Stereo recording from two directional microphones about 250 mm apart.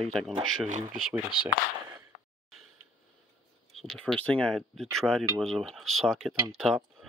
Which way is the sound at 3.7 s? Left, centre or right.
Centre.